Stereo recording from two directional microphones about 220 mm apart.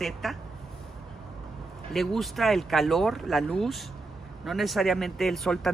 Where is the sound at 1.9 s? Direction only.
Centre (ahead or behind).